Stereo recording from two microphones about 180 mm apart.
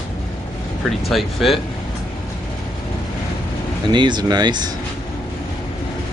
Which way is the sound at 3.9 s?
25° right (ahead or behind).